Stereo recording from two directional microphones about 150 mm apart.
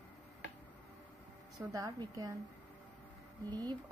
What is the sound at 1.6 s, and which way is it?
Speech, 20° right (ahead or behind).